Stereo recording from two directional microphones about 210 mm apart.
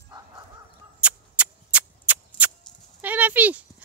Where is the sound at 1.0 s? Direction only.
5° right (ahead or behind).